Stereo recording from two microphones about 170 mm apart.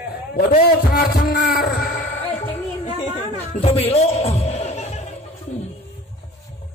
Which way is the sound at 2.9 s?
35° left (ahead or behind).